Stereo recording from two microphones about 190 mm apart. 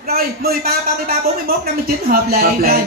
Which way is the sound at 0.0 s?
55° right (ahead or behind).